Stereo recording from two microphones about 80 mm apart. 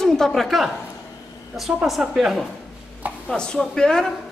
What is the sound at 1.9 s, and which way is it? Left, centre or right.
Speech, centre.